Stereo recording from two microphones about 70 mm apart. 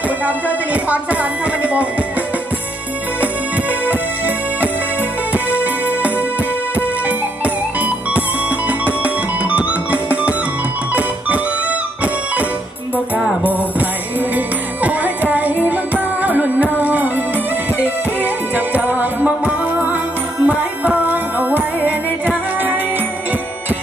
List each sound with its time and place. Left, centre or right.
0.7 s music: right
5.6 s music: right
10.9 s music: right
14.3 s music: right
18.2 s music: right